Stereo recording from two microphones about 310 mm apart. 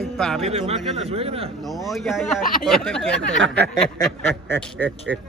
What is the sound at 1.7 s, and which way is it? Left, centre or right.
Speech, centre.